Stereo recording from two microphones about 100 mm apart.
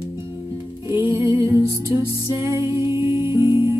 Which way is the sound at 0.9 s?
25° right (ahead or behind).